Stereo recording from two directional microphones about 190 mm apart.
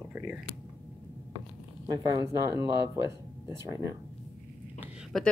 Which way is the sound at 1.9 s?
20° right (ahead or behind).